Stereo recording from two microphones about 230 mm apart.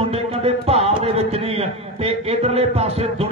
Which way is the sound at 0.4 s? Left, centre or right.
Right.